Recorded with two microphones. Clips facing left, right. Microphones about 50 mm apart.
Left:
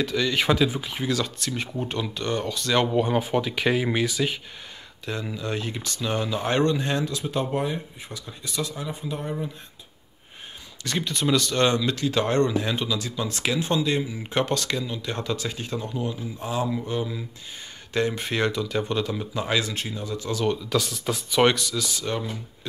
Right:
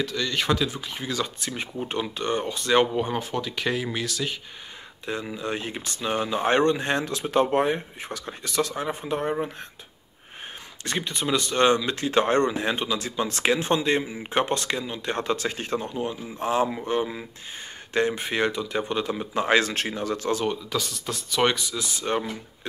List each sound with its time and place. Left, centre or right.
0.0 s speech: centre
1.2 s speech: centre
2.9 s speech: centre
5.3 s speech: right
11.0 s speech: centre; by 14.1 s right
14.1 s speech: right
15.0 s speech: right
18.2 s speech: centre
19.3 s speech: right
20.4 s speech: centre
21.7 s speech: right